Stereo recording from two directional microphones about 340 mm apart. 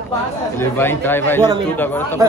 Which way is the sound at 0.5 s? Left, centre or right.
Centre.